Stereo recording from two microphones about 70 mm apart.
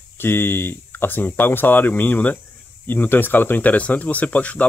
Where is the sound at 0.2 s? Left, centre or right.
Left.